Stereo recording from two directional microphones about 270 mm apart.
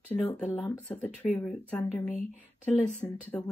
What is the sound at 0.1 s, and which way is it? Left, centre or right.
Speech, centre.